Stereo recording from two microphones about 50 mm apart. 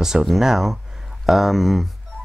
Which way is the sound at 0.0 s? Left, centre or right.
Centre.